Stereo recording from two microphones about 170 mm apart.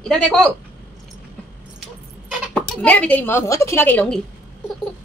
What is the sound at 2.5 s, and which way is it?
A woman's voice, 10° left (ahead or behind).